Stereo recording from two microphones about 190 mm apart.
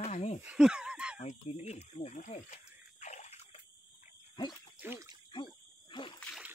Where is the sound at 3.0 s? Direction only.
40° left (ahead or behind).